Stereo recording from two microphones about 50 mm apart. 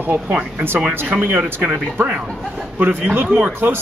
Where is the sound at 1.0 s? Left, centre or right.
Right.